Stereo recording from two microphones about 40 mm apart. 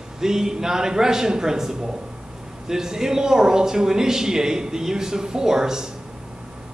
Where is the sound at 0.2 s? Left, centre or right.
Centre.